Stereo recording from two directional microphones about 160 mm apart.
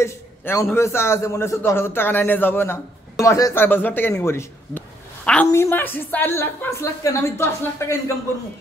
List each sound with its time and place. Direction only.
0.0 s a man's voice: 15° left (ahead or behind)